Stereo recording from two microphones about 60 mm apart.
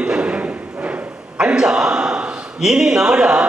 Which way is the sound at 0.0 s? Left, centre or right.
Centre.